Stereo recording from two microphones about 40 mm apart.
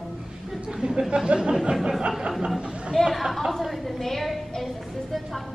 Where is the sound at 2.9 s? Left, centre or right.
Centre.